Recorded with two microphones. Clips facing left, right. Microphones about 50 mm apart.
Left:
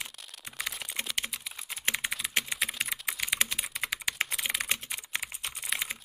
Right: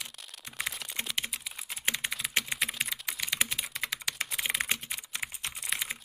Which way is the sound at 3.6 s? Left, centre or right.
Centre.